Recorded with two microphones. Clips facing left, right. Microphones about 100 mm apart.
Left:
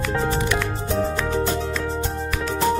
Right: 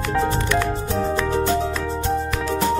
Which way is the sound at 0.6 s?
5° right (ahead or behind).